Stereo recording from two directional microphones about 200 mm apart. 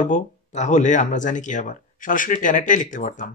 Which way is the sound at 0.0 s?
35° left (ahead or behind).